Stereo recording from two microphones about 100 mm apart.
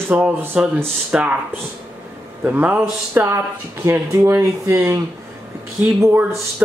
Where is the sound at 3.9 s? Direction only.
25° right (ahead or behind).